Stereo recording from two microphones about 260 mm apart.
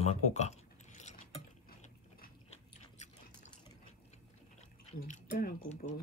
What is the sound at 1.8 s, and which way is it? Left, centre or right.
Biting, left.